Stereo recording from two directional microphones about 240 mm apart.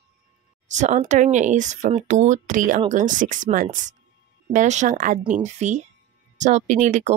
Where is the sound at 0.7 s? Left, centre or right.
Right.